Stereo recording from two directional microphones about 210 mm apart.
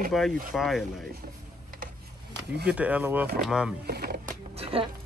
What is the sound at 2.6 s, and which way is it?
Speech, 5° right (ahead or behind).